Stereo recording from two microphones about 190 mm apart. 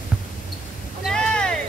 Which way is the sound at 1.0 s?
5° left (ahead or behind).